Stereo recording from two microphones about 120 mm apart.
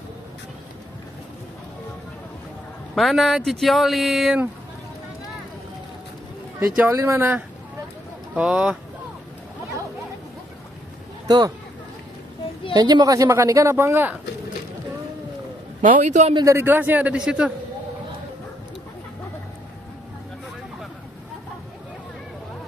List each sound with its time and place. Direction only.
2.9 s speech: centre (ahead or behind)
6.6 s a man's voice: 25° right (ahead or behind); by 8.7 s 10° right (ahead or behind)
11.2 s speech: 30° right (ahead or behind)
12.7 s speech: 35° right (ahead or behind); by 14.1 s 20° right (ahead or behind)
15.8 s a man's voice: 90° right
16.4 s a man's voice: 20° right (ahead or behind)